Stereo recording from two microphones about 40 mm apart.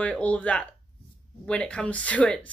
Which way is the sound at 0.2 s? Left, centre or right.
Left.